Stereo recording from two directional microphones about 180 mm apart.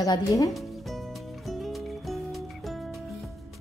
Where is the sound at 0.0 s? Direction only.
20° left (ahead or behind).